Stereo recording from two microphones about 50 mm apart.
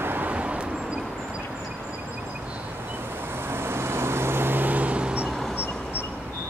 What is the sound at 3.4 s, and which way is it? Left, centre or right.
Vehicle, right.